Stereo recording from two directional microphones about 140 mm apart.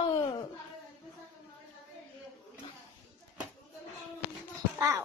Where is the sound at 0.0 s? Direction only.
30° left (ahead or behind).